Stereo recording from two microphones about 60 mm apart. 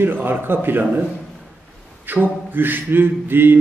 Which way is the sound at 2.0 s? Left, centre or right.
Right.